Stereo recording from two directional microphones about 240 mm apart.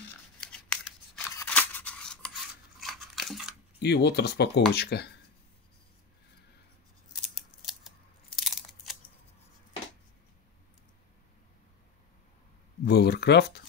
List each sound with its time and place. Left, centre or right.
0.5 s scissors: centre
2.8 s a sound: centre
3.8 s speech: left
7.3 s scissors: centre
8.4 s crunch: centre
12.8 s speech: left